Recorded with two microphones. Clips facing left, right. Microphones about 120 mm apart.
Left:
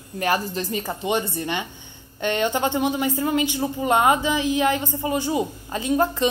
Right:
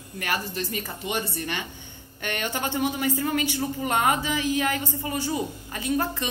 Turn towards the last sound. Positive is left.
turn(degrees=20)  # may be behind; listen again after turning